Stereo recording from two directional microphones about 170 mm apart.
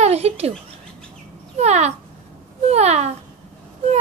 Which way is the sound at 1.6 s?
40° right (ahead or behind).